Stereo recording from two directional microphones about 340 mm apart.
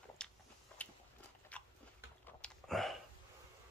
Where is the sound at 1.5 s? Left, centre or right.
Centre.